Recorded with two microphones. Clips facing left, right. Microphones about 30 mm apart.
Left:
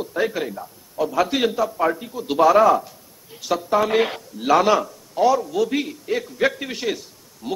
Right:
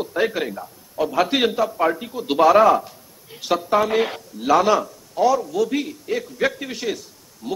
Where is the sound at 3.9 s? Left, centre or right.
Centre.